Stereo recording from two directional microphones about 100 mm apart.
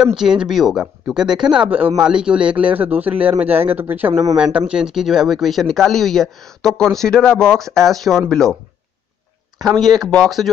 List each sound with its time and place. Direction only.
0.2 s a man's voice: 5° right (ahead or behind)
9.6 s speech: centre (ahead or behind)